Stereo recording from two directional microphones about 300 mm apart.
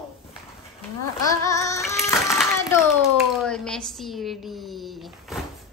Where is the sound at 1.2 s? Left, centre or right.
Centre.